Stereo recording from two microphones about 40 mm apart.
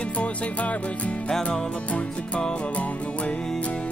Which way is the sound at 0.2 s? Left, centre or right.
Left.